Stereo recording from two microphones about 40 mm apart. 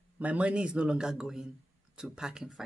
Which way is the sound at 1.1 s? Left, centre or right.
Centre.